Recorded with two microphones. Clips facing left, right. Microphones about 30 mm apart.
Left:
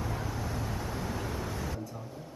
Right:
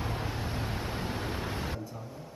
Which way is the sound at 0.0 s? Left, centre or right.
Right.